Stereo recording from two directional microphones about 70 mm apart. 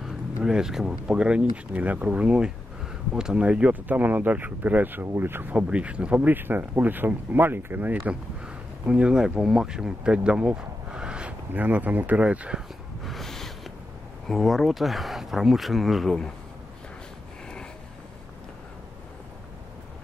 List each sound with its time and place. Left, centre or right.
0.0 s speech: centre
11.5 s speech: right
13.0 s a sound: centre
14.2 s speech: centre